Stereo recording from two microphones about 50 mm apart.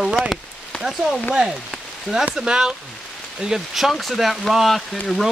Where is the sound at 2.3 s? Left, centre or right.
Centre.